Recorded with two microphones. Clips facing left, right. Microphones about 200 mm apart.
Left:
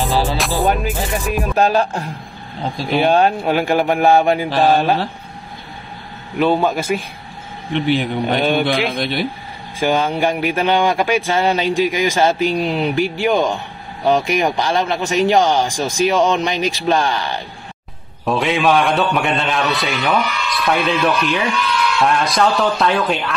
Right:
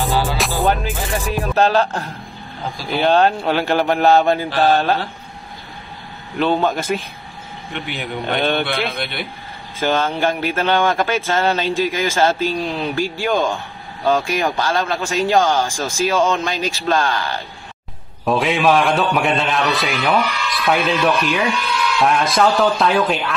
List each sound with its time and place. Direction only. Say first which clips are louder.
0.0 s music: left 1 dB; centre (ahead or behind)
0.7 s speech: left 1 dB; 15° left (ahead or behind)
6.3 s speech: left 2 dB; 10° left (ahead or behind)
8.4 s speech: left 2 dB; 10° left (ahead or behind)
18.2 s a man's voice: even; centre (ahead or behind)